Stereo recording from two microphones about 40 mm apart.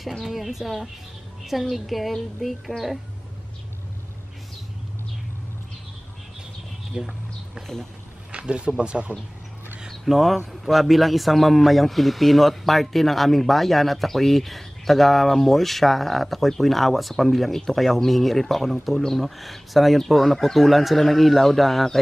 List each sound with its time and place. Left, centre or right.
0.2 s a man's voice: centre
7.0 s a sound: centre
8.3 s speech: right
9.8 s a man's voice: centre